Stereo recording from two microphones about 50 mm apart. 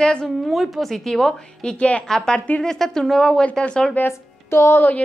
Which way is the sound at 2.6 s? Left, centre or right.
Centre.